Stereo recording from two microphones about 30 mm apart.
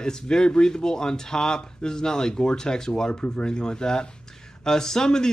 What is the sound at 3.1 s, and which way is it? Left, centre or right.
Speech, left.